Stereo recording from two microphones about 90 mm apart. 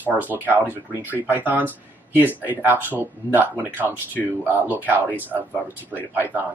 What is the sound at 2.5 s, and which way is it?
Speech, 25° left (ahead or behind).